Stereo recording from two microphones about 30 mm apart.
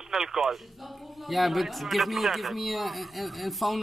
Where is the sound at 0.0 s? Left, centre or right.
Centre.